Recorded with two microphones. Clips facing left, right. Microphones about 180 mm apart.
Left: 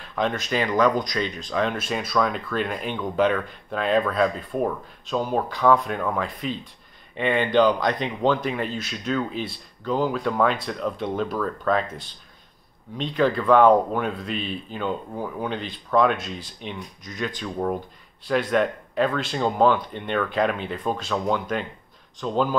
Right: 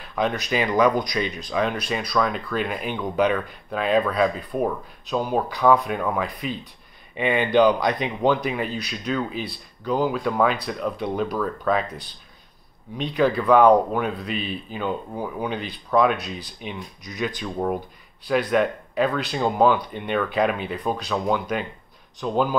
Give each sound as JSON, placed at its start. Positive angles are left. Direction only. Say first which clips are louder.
{"t": 0.0, "sound": "speech", "louder": "right 1 dB", "side_deg": -5}